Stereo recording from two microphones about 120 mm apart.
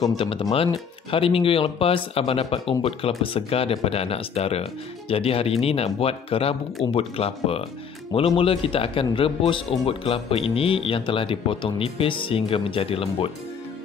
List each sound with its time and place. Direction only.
0.2 s speech: 50° left (ahead or behind)